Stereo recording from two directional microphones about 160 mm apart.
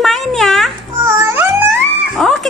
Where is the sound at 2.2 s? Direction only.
Centre (ahead or behind).